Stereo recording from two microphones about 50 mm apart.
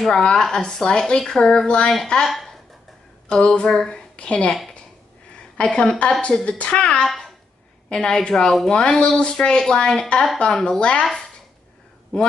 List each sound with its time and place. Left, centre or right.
0.0 s a woman's voice: centre
2.2 s a sound: centre
3.3 s a woman's voice: centre
4.5 s speech: centre
5.6 s a woman's voice: centre
7.1 s babbling: centre
7.9 s a woman's voice: centre